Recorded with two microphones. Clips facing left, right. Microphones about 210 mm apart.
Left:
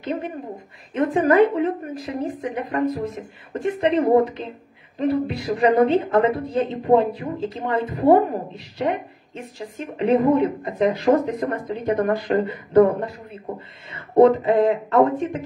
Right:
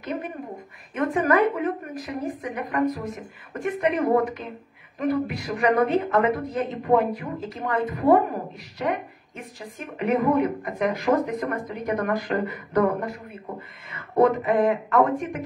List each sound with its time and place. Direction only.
0.0 s speech: 30° left (ahead or behind)